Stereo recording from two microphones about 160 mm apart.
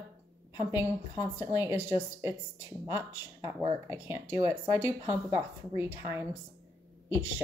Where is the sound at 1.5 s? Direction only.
15° right (ahead or behind).